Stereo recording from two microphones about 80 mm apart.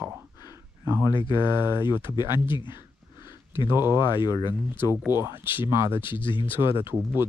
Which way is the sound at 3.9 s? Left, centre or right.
Left.